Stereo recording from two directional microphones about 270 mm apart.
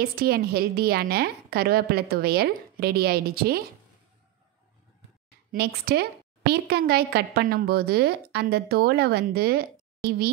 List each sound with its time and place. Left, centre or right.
0.0 s a woman's voice: right
5.5 s a woman's voice: right